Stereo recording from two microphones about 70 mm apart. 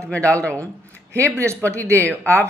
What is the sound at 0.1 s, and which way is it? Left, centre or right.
Speech, centre.